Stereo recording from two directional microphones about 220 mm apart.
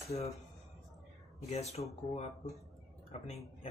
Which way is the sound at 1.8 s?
30° left (ahead or behind).